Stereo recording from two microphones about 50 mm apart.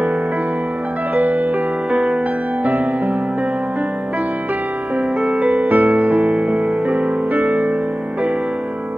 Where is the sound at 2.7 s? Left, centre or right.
Right.